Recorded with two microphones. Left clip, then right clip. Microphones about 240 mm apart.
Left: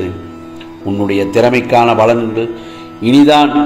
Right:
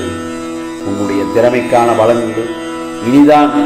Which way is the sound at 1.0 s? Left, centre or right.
Left.